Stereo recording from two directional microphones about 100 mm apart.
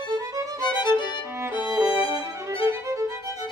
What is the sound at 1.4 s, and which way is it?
Violin, 25° right (ahead or behind).